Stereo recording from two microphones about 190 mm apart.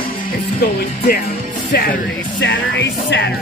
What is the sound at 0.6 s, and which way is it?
Speech, 50° left (ahead or behind).